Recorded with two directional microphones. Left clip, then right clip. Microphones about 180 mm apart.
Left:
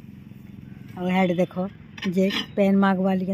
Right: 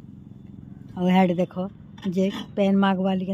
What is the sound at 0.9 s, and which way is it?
Speech, 35° right (ahead or behind).